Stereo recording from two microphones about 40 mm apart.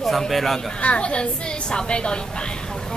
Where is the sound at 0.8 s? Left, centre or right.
Left.